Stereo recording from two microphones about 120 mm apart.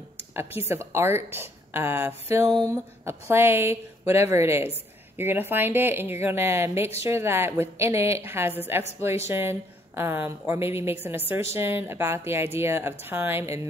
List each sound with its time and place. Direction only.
0.4 s a woman's voice: 20° right (ahead or behind)